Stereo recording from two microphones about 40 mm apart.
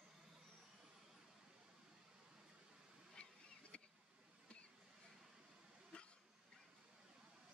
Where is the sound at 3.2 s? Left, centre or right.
Left.